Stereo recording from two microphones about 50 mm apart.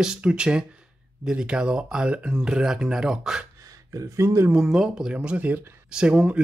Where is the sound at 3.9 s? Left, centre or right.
Right.